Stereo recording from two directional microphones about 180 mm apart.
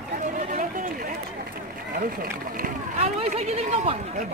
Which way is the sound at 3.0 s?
35° right (ahead or behind).